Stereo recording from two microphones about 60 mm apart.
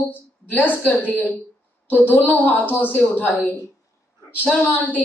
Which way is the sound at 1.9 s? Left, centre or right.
Left.